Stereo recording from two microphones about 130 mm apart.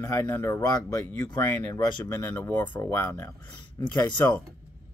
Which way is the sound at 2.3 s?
15° left (ahead or behind).